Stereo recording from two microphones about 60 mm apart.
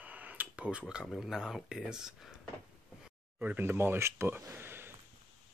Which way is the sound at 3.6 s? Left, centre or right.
Right.